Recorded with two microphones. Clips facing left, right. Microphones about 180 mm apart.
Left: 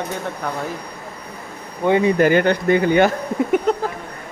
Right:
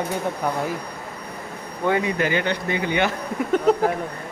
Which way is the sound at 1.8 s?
25° left (ahead or behind).